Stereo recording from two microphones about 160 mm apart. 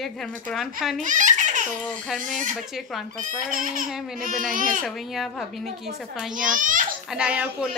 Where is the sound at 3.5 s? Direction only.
60° right (ahead or behind).